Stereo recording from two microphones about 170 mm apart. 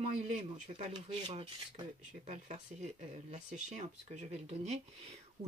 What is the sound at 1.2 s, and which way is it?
Speech, 35° right (ahead or behind).